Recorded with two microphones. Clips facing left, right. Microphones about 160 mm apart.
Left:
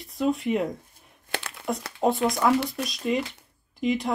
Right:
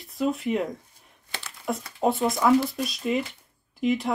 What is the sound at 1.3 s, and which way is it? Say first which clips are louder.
Crumpling: left 6 dB; 65° left (ahead or behind).